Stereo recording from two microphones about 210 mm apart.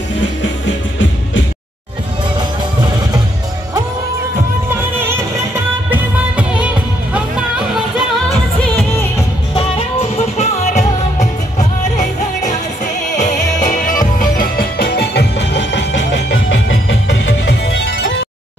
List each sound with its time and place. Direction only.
4.9 s music: 10° right (ahead or behind)
9.5 s music: 25° left (ahead or behind); by 18.1 s 55° left (ahead or behind)